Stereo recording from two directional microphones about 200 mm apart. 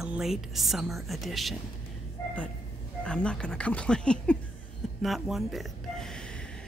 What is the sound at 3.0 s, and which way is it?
Speech, 5° left (ahead or behind).